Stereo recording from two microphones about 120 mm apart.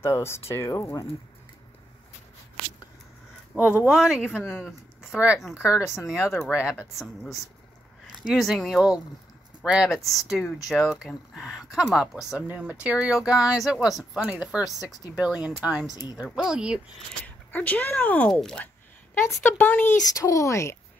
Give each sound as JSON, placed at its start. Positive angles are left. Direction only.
{"t": 0.0, "sound": "speech", "side_deg": 20}
{"t": 3.5, "sound": "speech", "side_deg": -10}
{"t": 15.9, "sound": "a woman's voice", "side_deg": 35}
{"t": 16.2, "sound": "speech", "side_deg": 0}
{"t": 17.2, "sound": "speech", "side_deg": 15}
{"t": 19.4, "sound": "speech", "side_deg": 15}
{"t": 20.2, "sound": "speech", "side_deg": 25}